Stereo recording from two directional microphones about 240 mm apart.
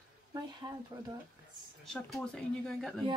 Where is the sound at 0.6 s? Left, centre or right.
Centre.